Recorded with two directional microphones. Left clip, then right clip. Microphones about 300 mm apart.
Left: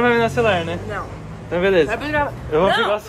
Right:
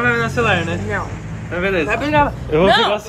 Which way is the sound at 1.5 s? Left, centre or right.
Left.